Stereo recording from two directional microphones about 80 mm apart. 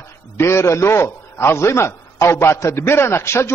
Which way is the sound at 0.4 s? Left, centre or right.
Left.